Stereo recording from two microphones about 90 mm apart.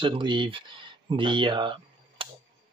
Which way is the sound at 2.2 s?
80° right.